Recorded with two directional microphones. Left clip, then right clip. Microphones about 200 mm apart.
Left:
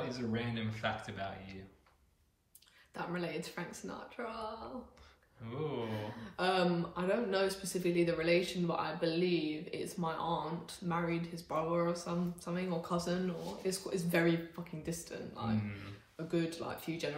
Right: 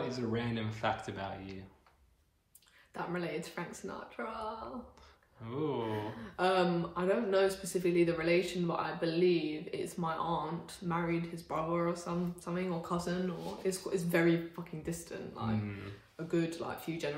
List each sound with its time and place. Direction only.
0.0 s speech: 15° right (ahead or behind)
2.9 s speech: 5° right (ahead or behind)
5.4 s speech: 10° right (ahead or behind)